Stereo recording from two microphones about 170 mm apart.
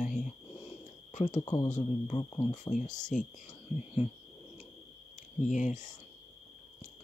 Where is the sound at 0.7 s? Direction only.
45° left (ahead or behind).